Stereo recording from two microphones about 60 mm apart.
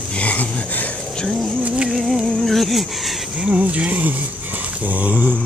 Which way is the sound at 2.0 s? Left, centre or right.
Centre.